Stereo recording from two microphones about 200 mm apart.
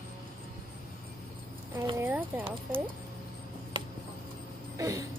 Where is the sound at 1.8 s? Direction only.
10° right (ahead or behind).